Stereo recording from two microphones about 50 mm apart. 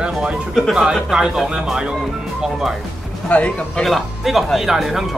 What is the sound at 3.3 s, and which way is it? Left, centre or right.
Speech, left.